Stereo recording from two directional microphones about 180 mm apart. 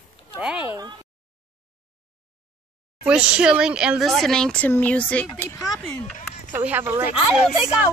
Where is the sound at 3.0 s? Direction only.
5° right (ahead or behind); by 5.5 s 10° left (ahead or behind).